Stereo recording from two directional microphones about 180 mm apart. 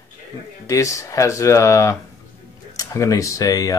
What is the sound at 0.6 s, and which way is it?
Speech, 15° left (ahead or behind).